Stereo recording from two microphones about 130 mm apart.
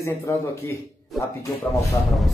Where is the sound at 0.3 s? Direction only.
20° left (ahead or behind).